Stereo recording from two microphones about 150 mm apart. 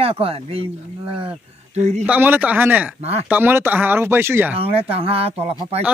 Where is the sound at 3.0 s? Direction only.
45° right (ahead or behind).